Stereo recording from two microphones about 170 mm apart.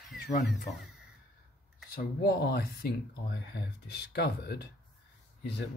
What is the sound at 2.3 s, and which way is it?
Speech, 65° left (ahead or behind).